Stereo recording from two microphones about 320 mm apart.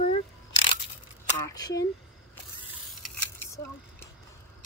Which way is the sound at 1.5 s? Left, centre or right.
Centre.